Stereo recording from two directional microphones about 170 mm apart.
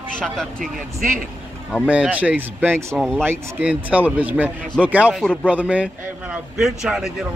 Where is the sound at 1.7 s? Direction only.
5° right (ahead or behind).